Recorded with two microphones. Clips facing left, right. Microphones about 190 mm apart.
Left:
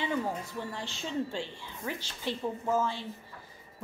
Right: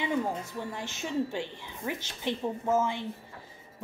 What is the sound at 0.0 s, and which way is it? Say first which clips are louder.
A woman's voice: right 2 dB; 15° right (ahead or behind).